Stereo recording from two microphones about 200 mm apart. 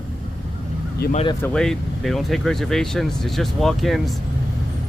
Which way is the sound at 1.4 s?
5° left (ahead or behind).